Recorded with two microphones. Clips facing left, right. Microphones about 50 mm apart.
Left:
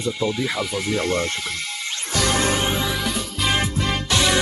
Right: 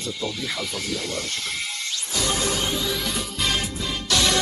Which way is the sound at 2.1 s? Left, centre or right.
Left.